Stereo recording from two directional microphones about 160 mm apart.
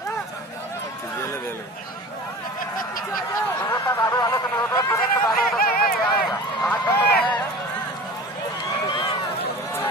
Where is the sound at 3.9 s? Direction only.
25° left (ahead or behind).